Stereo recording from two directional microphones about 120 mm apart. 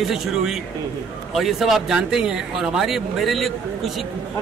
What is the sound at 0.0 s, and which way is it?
Speech, 5° right (ahead or behind).